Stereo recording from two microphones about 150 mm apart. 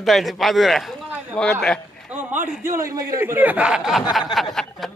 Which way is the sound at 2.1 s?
15° right (ahead or behind).